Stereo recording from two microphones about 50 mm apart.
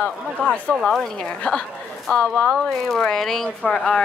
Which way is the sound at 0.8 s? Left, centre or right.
Centre.